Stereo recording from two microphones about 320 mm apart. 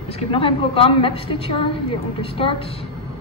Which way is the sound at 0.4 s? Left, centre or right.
Centre.